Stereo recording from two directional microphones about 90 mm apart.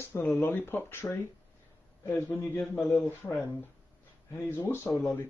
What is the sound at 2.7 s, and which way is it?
Speech, centre (ahead or behind).